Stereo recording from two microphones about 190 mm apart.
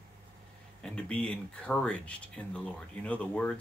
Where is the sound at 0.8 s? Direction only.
5° left (ahead or behind).